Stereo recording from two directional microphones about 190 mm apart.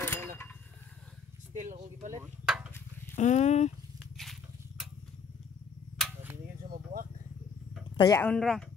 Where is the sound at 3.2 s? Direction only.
40° left (ahead or behind).